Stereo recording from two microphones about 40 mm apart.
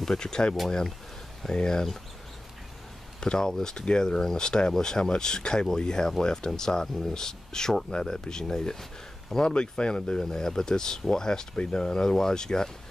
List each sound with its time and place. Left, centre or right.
0.0 s speech: centre
3.2 s speech: centre
9.5 s speech: left